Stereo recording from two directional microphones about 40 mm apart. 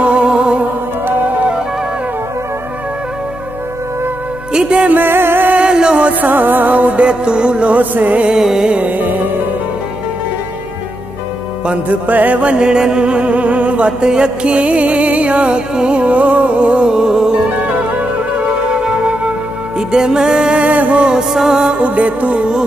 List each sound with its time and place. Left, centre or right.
0.0 s music: right
4.5 s speech: right
4.9 s music: right
5.6 s music: right
6.2 s music: right
7.1 s music: right
7.7 s music: right
8.4 s carnatic music: centre
8.8 s music: right
11.6 s music: right
17.5 s music: right
19.9 s music: centre
20.6 s music: right
21.0 s music: centre